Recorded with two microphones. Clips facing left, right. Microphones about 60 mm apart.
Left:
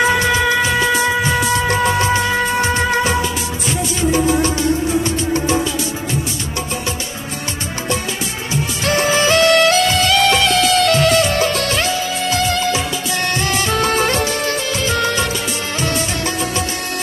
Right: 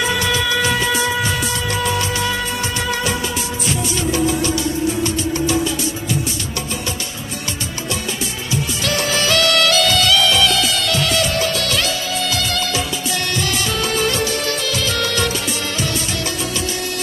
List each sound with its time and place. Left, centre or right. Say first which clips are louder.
0.0 s music: left 4 dB; left
1.7 s music of bollywood: left 5 dB; left
4.1 s music: left 3 dB; left
8.8 s music: left 5 dB; left
13.3 s music: left 5 dB; left